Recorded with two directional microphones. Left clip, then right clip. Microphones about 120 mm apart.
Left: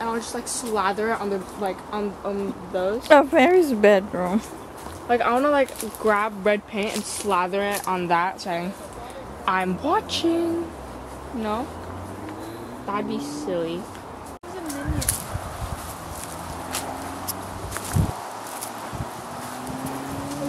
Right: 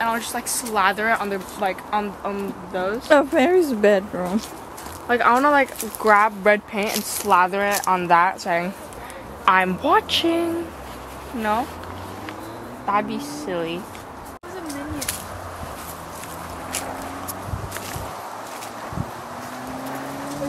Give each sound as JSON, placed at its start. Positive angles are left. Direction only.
{"t": 0.0, "sound": "speech", "side_deg": -40}
{"t": 3.1, "sound": "speech", "side_deg": 0}
{"t": 5.0, "sound": "a woman's voice", "side_deg": -40}
{"t": 12.8, "sound": "speech", "side_deg": -35}